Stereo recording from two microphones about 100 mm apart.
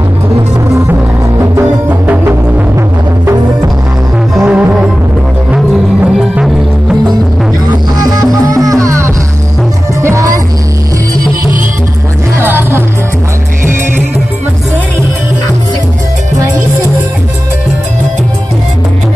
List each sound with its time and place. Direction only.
4.4 s music: 10° right (ahead or behind)
8.0 s music: 40° right (ahead or behind)
12.4 s music: 20° right (ahead or behind)